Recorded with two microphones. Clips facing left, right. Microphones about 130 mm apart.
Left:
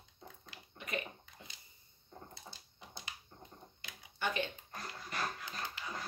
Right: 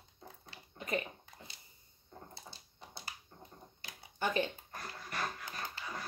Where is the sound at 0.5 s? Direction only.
30° right (ahead or behind).